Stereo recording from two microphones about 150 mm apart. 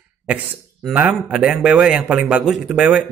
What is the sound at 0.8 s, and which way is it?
A man's voice, 5° right (ahead or behind).